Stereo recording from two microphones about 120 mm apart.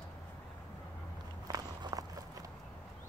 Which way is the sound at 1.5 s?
30° right (ahead or behind).